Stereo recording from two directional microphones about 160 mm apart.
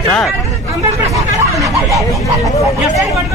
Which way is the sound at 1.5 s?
20° right (ahead or behind).